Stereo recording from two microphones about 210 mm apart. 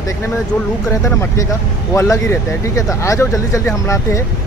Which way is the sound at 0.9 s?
15° left (ahead or behind).